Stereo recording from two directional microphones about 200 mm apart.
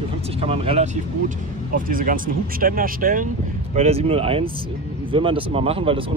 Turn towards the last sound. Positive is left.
turn(degrees=-25)  # may be behind; listen again after turning